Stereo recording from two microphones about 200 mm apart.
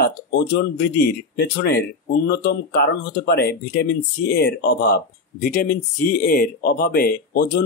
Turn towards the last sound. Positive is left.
turn(degrees=50)  # may be behind; listen again after turning